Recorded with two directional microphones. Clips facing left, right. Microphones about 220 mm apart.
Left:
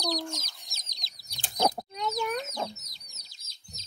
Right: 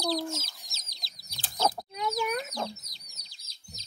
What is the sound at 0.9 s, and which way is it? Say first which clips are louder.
Chicken: right 1 dB; 15° left (ahead or behind).